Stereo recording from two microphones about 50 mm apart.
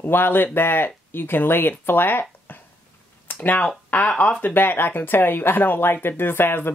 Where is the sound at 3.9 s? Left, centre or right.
Left.